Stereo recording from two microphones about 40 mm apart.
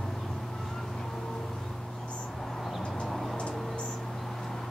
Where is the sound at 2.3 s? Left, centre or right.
Centre.